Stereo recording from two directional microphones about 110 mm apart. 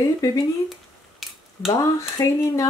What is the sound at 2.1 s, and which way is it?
Speech, 30° left (ahead or behind).